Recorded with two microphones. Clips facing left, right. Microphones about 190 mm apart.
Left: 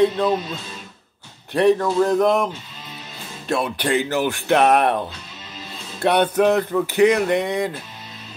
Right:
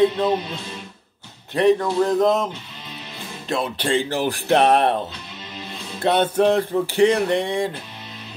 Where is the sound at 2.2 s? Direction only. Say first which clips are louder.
Left 1 dB; 20° right (ahead or behind).